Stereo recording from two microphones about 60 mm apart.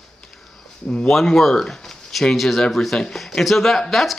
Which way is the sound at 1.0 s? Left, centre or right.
Centre.